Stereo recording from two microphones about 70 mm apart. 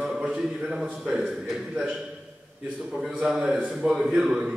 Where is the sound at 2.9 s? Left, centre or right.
Centre.